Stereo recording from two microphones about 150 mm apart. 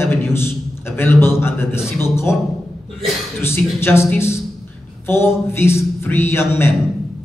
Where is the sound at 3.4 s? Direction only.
15° left (ahead or behind).